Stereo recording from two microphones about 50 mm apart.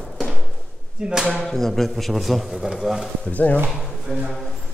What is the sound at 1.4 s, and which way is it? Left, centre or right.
A man's voice, centre.